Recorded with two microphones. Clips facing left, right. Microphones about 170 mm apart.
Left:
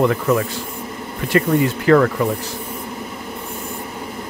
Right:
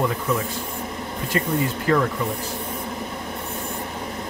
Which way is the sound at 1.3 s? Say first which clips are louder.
Left 7 dB; 70° left (ahead or behind).